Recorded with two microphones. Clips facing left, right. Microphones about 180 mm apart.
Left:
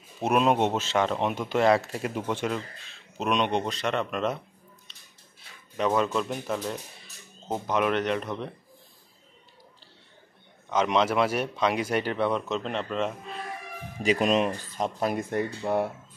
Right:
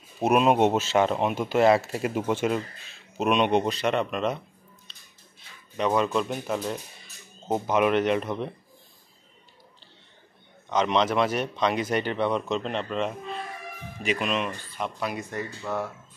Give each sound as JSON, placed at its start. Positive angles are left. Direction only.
{"t": 0.2, "sound": "speech", "side_deg": -10}
{"t": 5.8, "sound": "speech", "side_deg": 0}
{"t": 10.7, "sound": "speech", "side_deg": 5}
{"t": 14.0, "sound": "speech", "side_deg": 35}
{"t": 15.7, "sound": "speech", "side_deg": 30}